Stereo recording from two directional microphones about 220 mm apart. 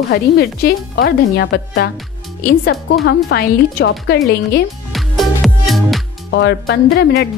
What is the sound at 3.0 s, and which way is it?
A woman's voice, 50° left (ahead or behind).